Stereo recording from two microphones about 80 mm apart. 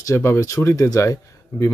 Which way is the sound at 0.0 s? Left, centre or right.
Left.